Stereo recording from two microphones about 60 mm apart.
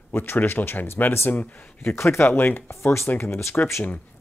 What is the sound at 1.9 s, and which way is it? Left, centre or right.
Speech, left.